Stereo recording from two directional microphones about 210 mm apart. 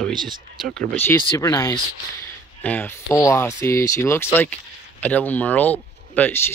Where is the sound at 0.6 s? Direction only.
5° left (ahead or behind).